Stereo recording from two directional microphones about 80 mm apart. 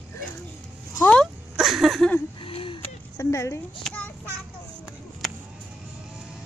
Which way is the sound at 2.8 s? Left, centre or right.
Left.